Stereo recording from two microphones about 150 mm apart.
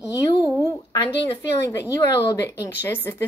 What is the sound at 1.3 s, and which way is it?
Speech, 20° left (ahead or behind).